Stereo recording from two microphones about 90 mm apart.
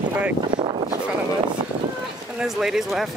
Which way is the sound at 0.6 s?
70° right (ahead or behind).